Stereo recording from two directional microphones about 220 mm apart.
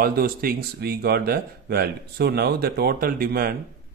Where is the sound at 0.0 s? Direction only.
45° right (ahead or behind).